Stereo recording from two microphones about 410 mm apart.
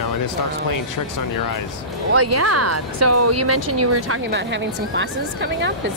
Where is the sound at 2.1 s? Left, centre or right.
Right.